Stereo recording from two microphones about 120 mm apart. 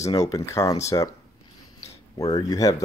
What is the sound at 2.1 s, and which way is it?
Speech, 35° left (ahead or behind).